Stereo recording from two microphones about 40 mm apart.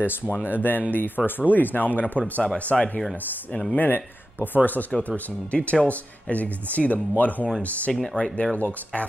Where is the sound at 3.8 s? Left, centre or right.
Left.